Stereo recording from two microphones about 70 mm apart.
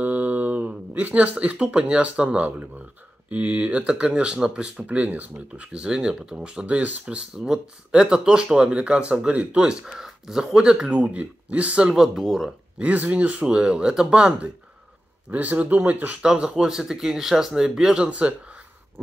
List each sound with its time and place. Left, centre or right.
0.0 s speech: right
4.8 s speech: right
11.9 s speech: centre
12.7 s speech: right
16.2 s speech: centre